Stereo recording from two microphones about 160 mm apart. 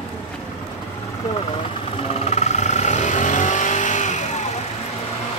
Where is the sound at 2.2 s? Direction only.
45° left (ahead or behind).